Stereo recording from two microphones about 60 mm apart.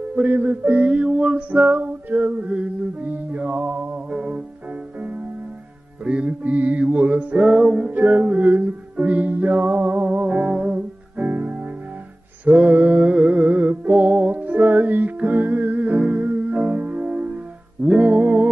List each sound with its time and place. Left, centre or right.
0.1 s music: right
4.1 s music: centre
6.0 s music: right